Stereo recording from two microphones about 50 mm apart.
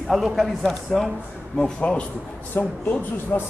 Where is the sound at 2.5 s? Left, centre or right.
Left.